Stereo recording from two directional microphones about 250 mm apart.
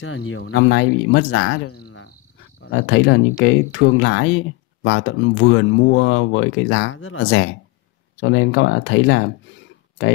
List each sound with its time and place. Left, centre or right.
0.0 s speech: left